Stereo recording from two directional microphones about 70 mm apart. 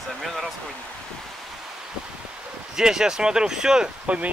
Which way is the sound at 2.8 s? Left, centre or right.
Centre.